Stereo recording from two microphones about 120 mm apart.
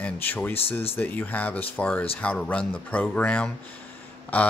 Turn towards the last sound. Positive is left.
turn(degrees=15)  # may be behind; listen again after turning